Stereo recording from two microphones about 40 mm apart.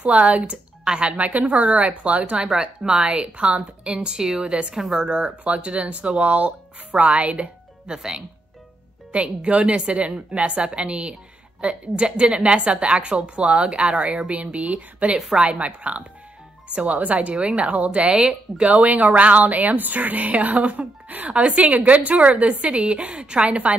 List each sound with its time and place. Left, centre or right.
0.0 s a woman's voice: right
2.3 s a woman's voice: centre
7.8 s speech: centre
9.1 s a woman's voice: right
15.1 s a woman's voice: centre
15.6 s a woman's voice: right
18.7 s a woman's voice: right
21.3 s a woman's voice: right